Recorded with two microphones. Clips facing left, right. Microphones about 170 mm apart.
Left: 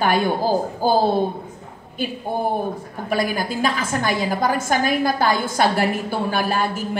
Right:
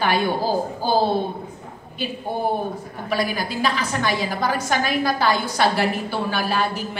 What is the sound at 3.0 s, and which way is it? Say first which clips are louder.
A woman's voice: left 2 dB; 45° left (ahead or behind).